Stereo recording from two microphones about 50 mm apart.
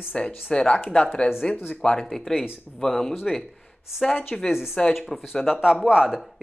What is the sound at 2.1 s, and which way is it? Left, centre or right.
Speech, centre.